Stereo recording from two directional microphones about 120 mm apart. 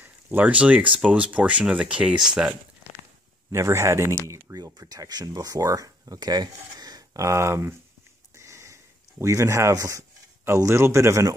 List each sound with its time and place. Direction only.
0.0 s speech: 15° right (ahead or behind)
3.5 s speech: 25° right (ahead or behind)
8.4 s a sound: 25° right (ahead or behind)
9.2 s speech: 25° right (ahead or behind)